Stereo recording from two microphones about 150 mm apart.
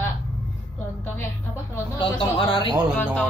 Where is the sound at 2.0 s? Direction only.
35° left (ahead or behind).